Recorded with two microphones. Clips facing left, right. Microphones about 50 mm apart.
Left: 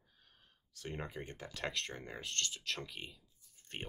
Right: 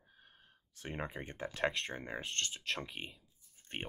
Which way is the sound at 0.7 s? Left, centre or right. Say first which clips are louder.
Right 2 dB; right.